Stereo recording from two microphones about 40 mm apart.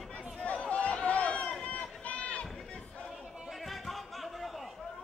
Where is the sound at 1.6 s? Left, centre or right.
Left.